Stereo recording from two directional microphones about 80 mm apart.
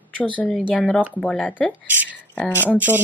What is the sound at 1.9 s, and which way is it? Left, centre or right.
Speech, right.